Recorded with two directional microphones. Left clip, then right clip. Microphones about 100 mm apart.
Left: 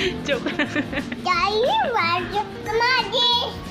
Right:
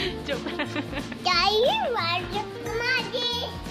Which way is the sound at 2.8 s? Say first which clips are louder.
Left 7 dB; 20° right (ahead or behind).